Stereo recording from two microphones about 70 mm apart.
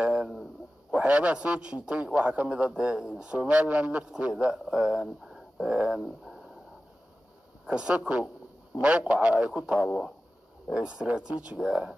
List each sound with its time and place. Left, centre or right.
0.0 s a sound: centre
0.9 s a man's voice: centre
7.6 s a man's voice: centre